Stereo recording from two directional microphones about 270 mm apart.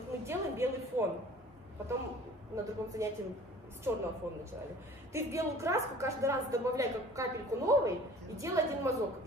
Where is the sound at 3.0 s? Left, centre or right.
Centre.